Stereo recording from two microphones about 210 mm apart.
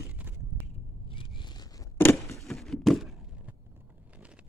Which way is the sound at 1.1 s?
25° left (ahead or behind).